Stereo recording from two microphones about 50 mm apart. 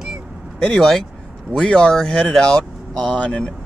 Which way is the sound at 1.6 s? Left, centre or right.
Centre.